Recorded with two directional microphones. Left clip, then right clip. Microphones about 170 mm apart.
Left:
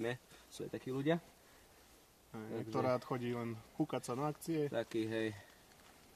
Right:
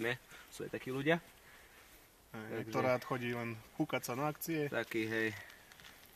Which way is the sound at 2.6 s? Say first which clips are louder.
Right 2 dB; 15° right (ahead or behind).